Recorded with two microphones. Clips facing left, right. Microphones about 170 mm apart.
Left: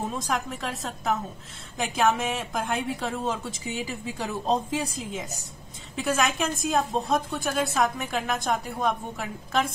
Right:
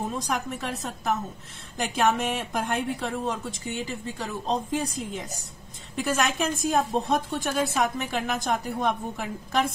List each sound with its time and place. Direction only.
0.3 s a woman's voice: centre (ahead or behind)